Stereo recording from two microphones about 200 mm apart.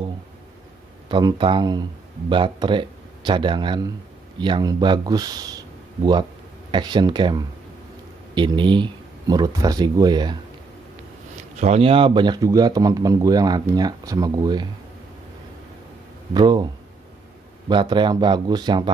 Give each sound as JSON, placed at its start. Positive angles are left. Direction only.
{"t": 1.0, "sound": "speech", "side_deg": -25}
{"t": 6.7, "sound": "speech", "side_deg": -20}
{"t": 11.5, "sound": "speech", "side_deg": -35}
{"t": 16.3, "sound": "speech", "side_deg": -20}
{"t": 17.6, "sound": "speech", "side_deg": -25}